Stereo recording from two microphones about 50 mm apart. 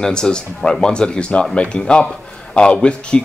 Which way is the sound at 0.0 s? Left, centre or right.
Centre.